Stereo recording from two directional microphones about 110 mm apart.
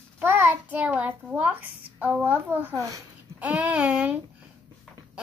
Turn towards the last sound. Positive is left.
turn(degrees=-10)  # may be behind; listen again after turning